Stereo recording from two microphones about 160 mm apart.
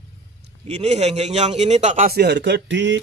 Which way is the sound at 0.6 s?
45° right (ahead or behind).